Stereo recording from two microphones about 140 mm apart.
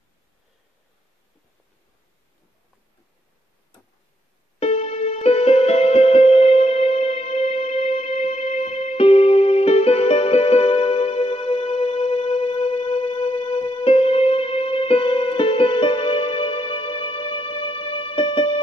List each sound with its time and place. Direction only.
4.6 s music: 50° left (ahead or behind)